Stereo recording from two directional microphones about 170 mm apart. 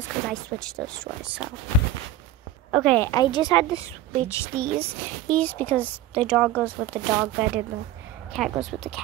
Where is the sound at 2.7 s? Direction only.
5° left (ahead or behind).